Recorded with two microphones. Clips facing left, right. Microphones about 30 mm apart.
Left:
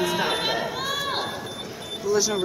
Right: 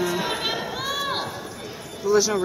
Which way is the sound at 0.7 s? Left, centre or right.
Centre.